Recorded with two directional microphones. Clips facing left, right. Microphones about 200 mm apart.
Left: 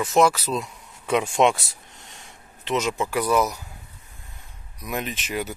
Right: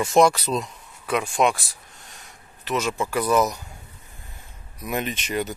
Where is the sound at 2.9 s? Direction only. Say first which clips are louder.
Right 2 dB; 15° left (ahead or behind).